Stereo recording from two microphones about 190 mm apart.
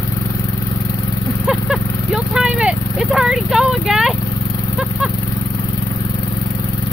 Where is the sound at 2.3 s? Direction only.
5° right (ahead or behind).